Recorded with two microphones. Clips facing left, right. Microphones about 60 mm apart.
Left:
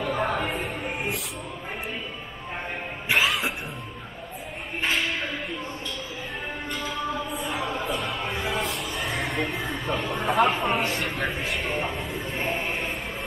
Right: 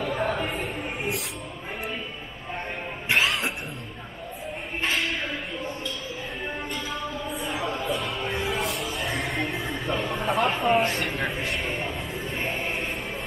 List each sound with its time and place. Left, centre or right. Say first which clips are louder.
0.0 s music: left 1 dB; left
3.1 s music: even; centre
6.7 s a sound: left 2 dB; left
8.0 s music: even; centre
10.2 s speech: left 3 dB; left
10.5 s speech: right 3 dB; centre
11.2 s a sound: even; centre